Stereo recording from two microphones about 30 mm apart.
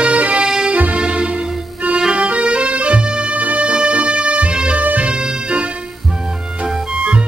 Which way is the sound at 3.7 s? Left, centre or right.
Right.